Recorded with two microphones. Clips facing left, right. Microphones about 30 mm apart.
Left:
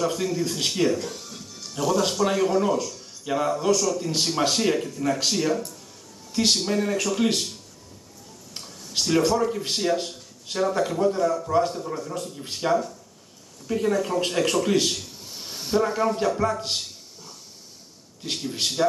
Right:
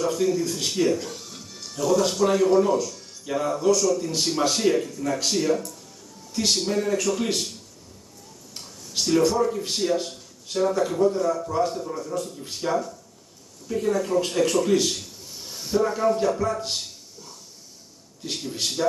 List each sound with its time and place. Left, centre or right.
0.0 s speech: centre
0.9 s music: centre
1.8 s a man's voice: centre
8.5 s speech: centre
15.2 s a sound: left
18.2 s speech: centre